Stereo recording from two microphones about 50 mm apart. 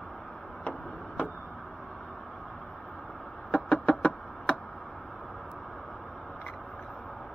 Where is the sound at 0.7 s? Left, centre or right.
Left.